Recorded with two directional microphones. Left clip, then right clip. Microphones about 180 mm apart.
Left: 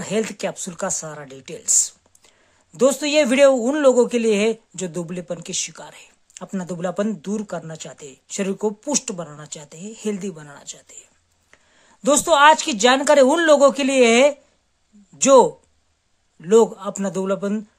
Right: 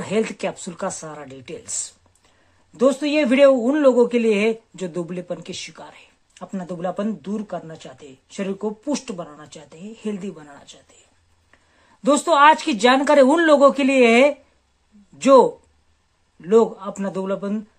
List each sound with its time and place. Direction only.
0.0 s speech: 15° left (ahead or behind)
2.8 s speech: 40° left (ahead or behind)
12.0 s speech: 25° left (ahead or behind)